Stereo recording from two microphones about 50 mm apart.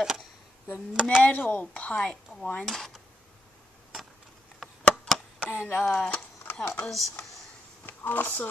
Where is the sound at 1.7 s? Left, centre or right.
Left.